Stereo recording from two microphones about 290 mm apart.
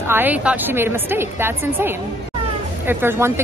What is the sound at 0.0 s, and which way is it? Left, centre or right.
Speech, centre.